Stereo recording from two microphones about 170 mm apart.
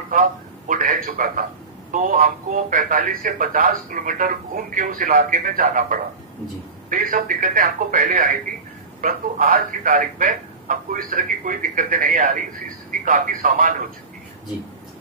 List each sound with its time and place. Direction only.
0.1 s speech: 55° right (ahead or behind)